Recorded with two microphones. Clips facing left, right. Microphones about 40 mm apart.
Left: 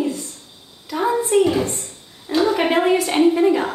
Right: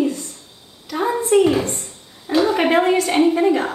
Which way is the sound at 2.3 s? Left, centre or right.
Centre.